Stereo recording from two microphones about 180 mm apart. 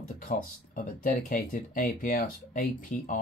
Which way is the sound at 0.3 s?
55° left (ahead or behind).